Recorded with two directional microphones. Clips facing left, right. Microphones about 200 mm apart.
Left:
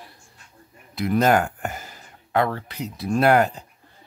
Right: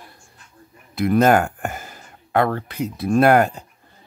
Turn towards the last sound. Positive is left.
turn(degrees=-50)  # may be behind; listen again after turning